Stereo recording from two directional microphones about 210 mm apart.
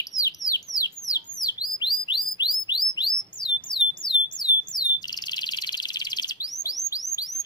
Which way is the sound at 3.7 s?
20° left (ahead or behind).